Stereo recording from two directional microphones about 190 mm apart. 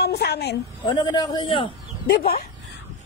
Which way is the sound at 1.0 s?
25° left (ahead or behind).